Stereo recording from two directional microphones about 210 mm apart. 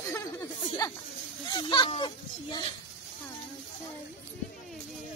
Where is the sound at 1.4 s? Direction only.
20° left (ahead or behind).